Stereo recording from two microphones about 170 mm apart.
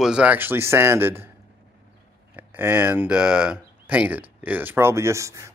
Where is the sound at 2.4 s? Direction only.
10° right (ahead or behind).